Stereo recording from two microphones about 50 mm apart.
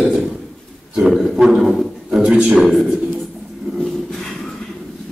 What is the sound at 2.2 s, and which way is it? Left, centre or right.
Speech, right.